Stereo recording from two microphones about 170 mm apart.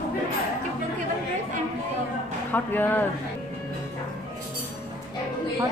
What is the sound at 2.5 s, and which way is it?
Speech, 10° left (ahead or behind).